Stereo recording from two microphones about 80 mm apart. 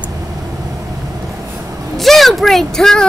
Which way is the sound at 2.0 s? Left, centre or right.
Centre.